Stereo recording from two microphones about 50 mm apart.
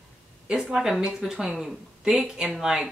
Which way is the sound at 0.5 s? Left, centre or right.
Centre.